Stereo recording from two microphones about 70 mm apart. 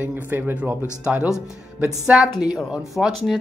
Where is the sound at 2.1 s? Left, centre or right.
Centre.